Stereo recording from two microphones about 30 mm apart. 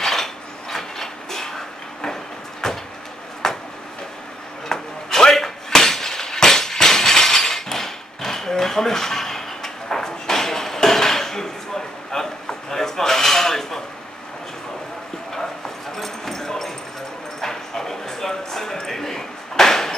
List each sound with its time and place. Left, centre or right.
0.0 s dishes: centre
2.6 s vehicle: centre
3.4 s a sound: centre
4.6 s a sound: centre
16.0 s clip-clop: centre
17.4 s bow-wow: centre